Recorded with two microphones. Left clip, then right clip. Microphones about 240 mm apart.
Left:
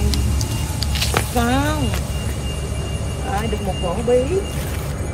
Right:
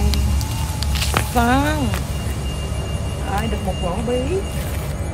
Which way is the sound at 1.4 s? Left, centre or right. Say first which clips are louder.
Right 3 dB; right.